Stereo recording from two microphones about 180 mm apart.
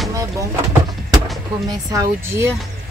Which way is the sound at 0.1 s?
20° right (ahead or behind).